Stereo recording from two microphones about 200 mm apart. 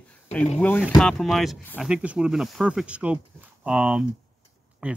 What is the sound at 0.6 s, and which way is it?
Speech, 10° left (ahead or behind).